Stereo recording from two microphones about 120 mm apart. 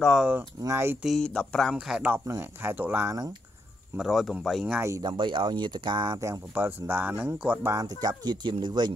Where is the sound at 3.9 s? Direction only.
Centre (ahead or behind).